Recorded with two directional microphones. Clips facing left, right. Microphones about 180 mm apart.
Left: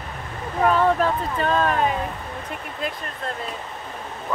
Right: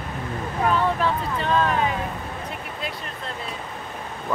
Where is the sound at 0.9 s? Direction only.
45° left (ahead or behind).